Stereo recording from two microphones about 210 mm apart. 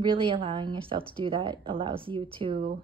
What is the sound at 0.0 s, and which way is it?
A woman's voice, 25° right (ahead or behind).